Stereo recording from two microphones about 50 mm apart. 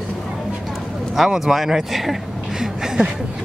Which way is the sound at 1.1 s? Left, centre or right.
Centre.